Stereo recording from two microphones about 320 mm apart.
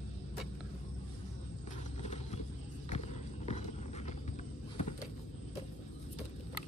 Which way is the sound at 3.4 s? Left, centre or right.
Left.